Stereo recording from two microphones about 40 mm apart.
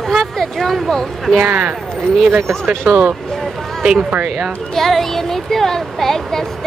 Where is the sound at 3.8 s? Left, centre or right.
Right.